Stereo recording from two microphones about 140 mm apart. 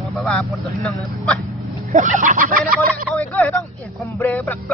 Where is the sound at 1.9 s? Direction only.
65° right (ahead or behind).